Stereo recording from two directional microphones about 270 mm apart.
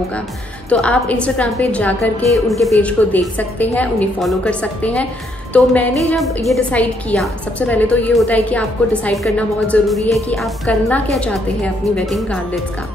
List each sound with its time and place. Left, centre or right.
0.7 s a woman's voice: centre